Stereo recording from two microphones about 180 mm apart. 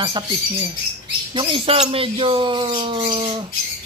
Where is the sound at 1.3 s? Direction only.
30° right (ahead or behind).